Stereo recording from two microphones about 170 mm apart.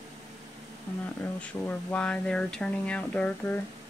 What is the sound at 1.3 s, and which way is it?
Speech, 10° left (ahead or behind).